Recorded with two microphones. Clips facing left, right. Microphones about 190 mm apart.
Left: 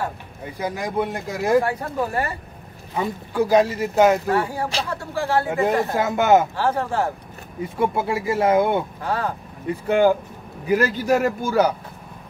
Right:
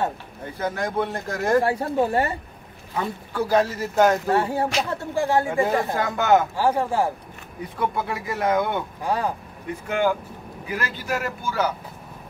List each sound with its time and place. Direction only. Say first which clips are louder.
0.6 s speech: left 1 dB; 15° left (ahead or behind)
1.6 s speech: right 2 dB; 30° right (ahead or behind)
3.0 s speech: left 4 dB; 10° left (ahead or behind)
4.3 s speech: right 1 dB; 25° right (ahead or behind)
5.5 s speech: left 2 dB; 20° left (ahead or behind)
6.5 s speech: right 1 dB; 10° right (ahead or behind)
7.6 s speech: left 4 dB; 25° left (ahead or behind)
9.0 s speech: even; 15° right (ahead or behind)
9.8 s a man's voice: left 6 dB; 40° left (ahead or behind)